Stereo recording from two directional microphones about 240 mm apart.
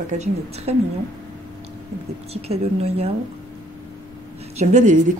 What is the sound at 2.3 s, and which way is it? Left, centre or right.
Speech, right.